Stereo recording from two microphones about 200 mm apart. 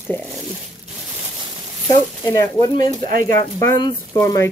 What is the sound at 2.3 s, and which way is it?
Speech, 15° left (ahead or behind).